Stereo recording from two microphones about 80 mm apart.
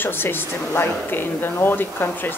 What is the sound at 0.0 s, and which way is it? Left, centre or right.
Speech, left.